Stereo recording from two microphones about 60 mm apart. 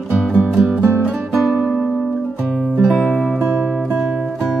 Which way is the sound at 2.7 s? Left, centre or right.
Right.